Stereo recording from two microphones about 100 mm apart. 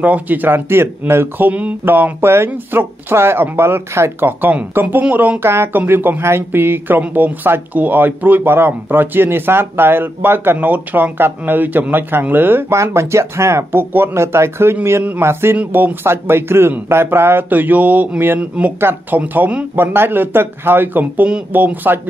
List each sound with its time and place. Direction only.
0.0 s speech: 15° right (ahead or behind)